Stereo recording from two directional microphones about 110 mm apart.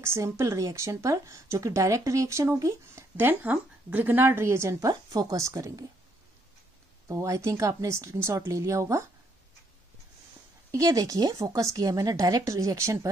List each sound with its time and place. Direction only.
0.0 s speech: 25° right (ahead or behind)
7.1 s speech: 30° right (ahead or behind)
10.7 s a woman's voice: 30° right (ahead or behind)